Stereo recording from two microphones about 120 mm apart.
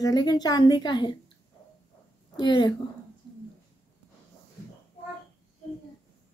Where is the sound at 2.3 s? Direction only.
35° left (ahead or behind).